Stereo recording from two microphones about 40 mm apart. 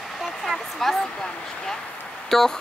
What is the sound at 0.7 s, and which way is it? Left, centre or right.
Speech, centre.